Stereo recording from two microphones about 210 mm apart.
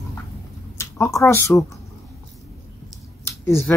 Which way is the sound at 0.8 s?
15° left (ahead or behind).